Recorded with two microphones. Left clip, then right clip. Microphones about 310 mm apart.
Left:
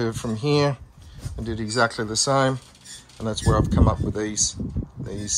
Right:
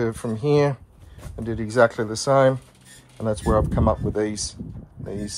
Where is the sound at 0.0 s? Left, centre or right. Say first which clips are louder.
Right 2 dB; centre.